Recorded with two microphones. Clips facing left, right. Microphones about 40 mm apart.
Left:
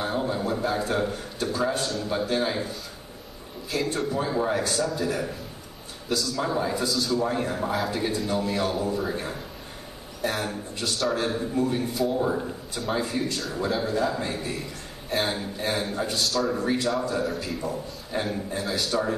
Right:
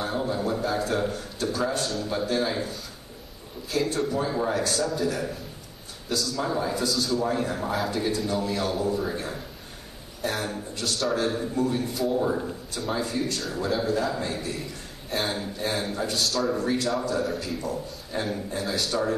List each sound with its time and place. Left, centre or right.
0.0 s a man's voice: centre
7.9 s a man's voice: centre
10.2 s a man's voice: centre
13.2 s a man's voice: centre
17.6 s a man's voice: centre